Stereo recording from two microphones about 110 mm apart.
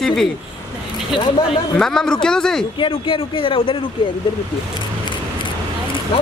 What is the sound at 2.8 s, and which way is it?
Speech, 55° left (ahead or behind).